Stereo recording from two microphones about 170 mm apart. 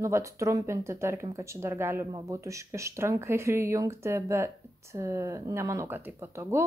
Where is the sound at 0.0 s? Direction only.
15° right (ahead or behind).